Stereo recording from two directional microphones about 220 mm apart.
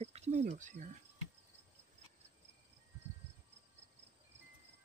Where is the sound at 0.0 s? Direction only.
30° right (ahead or behind).